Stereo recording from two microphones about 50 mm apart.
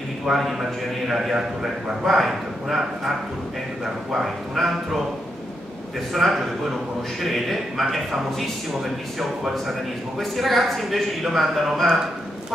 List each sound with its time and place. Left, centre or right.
0.3 s a man's voice: centre
3.8 s speech: centre
6.1 s a man's voice: centre
9.7 s a man's voice: centre